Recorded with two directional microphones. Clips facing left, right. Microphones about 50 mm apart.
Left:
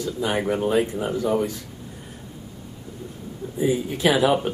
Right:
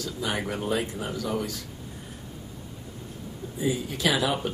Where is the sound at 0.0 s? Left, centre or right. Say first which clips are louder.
Left 6 dB; left.